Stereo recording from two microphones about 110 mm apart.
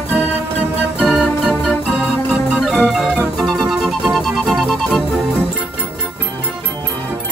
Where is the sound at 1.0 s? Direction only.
Centre (ahead or behind).